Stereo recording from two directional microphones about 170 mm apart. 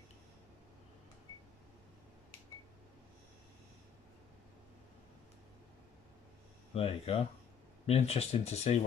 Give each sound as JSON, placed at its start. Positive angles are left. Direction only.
{"t": 6.7, "sound": "speech", "side_deg": 35}